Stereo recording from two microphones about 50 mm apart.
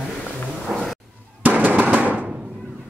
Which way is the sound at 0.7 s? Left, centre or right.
Centre.